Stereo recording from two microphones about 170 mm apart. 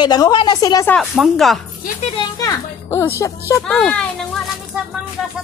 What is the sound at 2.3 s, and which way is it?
Speech, 15° left (ahead or behind).